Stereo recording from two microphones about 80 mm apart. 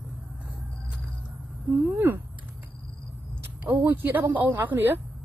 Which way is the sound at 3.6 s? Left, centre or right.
Right.